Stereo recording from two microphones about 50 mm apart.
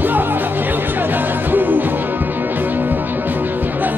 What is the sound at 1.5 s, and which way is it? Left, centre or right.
Music, right.